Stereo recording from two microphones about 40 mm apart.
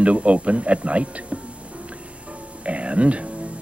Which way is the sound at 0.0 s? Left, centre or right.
Right.